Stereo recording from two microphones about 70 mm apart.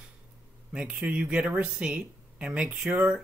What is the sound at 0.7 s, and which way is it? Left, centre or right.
Speech, centre.